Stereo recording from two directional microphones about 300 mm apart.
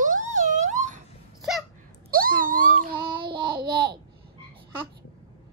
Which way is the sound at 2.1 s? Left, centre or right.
Right.